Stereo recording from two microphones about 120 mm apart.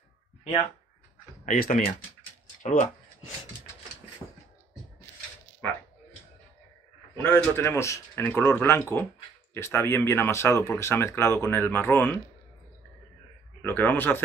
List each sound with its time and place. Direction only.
1.4 s speech: 90° left
4.2 s beatboxing: 30° left (ahead or behind)
7.2 s speech: 15° left (ahead or behind)
13.6 s speech: 15° left (ahead or behind)